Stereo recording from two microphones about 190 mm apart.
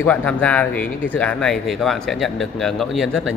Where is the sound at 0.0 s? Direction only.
5° left (ahead or behind).